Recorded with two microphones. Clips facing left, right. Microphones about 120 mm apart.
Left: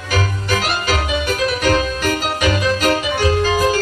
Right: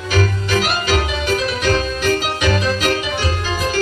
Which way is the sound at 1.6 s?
50° left (ahead or behind).